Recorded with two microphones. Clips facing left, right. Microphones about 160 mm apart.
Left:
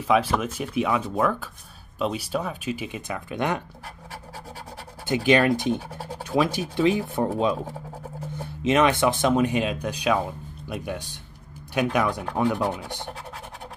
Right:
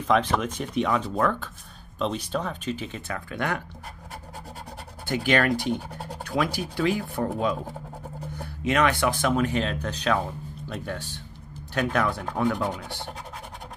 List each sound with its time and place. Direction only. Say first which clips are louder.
0.0 s speech: left 1 dB; 5° left (ahead or behind)
5.0 s speech: left 4 dB; 20° left (ahead or behind)
5.8 s scratch: left 1 dB; 5° left (ahead or behind)
6.2 s speech: left 3 dB; 20° left (ahead or behind)